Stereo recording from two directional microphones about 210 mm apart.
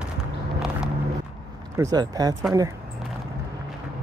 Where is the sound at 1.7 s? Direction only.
15° right (ahead or behind).